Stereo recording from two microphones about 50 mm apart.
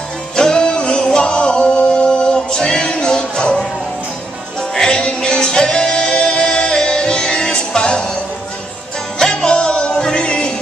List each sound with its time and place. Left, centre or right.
0.4 s music: centre
4.7 s music: centre
9.2 s music: centre